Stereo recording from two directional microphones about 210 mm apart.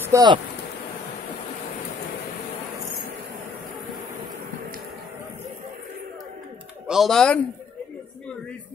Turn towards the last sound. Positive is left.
turn(degrees=5)  # may be behind; listen again after turning